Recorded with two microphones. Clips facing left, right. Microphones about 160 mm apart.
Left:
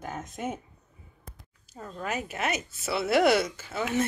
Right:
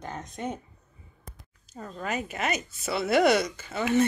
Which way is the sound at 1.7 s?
Centre (ahead or behind).